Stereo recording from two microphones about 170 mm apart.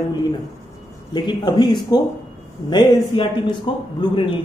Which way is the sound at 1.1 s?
25° left (ahead or behind).